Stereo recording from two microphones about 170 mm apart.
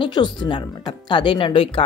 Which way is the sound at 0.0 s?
25° left (ahead or behind).